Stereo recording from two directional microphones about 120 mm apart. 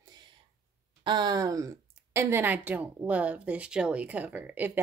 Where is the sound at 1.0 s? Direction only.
35° right (ahead or behind).